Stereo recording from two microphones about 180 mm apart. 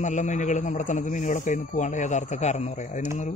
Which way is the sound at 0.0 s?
45° left (ahead or behind).